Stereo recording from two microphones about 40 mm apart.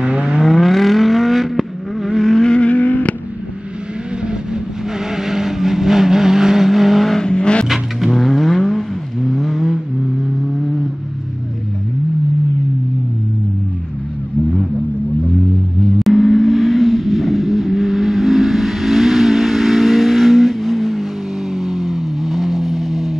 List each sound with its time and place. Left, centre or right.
0.0 s vehicle: right
0.4 s vehicle: centre
2.4 s vehicle: left
2.7 s vehicle: left
5.1 s vehicle: centre
7.2 s vehicle: left
7.6 s vehicle: centre
15.8 s vehicle: centre